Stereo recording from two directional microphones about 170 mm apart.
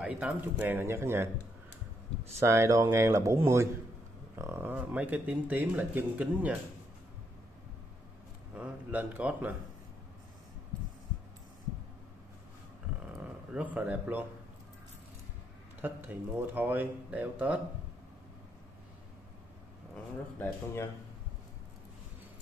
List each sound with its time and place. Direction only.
0.0 s speech: 10° right (ahead or behind)
2.4 s speech: 15° right (ahead or behind)
8.5 s speech: 10° right (ahead or behind)
13.2 s speech: 10° right (ahead or behind)
15.8 s speech: 10° right (ahead or behind)
20.3 s speech: 15° left (ahead or behind)